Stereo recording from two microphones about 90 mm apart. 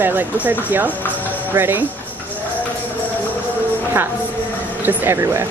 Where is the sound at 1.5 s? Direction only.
25° right (ahead or behind).